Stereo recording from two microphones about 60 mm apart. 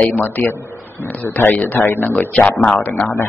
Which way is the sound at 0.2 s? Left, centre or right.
Left.